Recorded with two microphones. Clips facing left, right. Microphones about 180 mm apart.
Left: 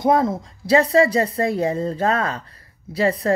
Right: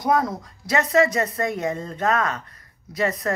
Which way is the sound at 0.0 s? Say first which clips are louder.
Left 4 dB; 25° left (ahead or behind).